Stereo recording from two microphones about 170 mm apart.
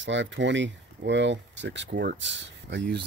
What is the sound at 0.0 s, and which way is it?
Speech, 90° right.